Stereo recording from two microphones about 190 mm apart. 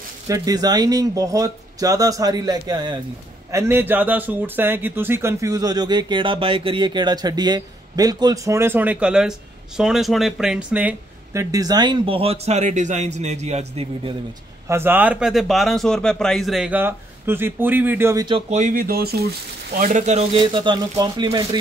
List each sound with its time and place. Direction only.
0.3 s speech: 20° right (ahead or behind)
14.7 s speech: 10° right (ahead or behind)
18.3 s speech: 40° right (ahead or behind); by 19.2 s 55° right (ahead or behind)
19.8 s speech: 40° right (ahead or behind); by 21.5 s 20° right (ahead or behind)